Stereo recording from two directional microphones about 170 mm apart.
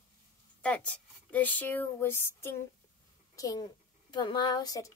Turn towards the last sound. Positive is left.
turn(degrees=20)  # may be behind; listen again after turning